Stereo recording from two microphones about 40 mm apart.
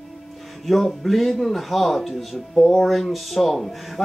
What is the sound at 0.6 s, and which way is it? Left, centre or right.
Speech, centre.